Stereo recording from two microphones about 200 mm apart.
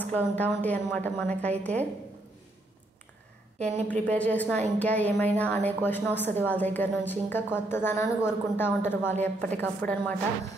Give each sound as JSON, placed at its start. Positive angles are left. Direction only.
{"t": 0.0, "sound": "a woman's voice", "side_deg": 10}
{"t": 3.5, "sound": "speech", "side_deg": -35}
{"t": 3.8, "sound": "a woman's voice", "side_deg": 5}